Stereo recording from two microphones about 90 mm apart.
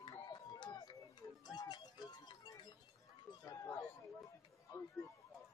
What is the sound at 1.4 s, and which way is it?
Music, 50° left (ahead or behind).